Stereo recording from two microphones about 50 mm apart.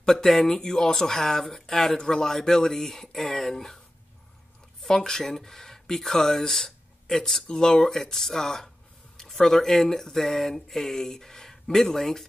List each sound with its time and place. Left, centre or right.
0.0 s speech: centre
4.8 s speech: centre